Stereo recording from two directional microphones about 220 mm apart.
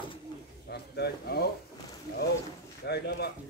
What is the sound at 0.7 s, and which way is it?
Speech, 50° left (ahead or behind).